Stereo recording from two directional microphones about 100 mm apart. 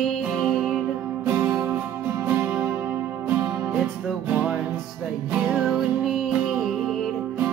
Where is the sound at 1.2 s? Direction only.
30° right (ahead or behind).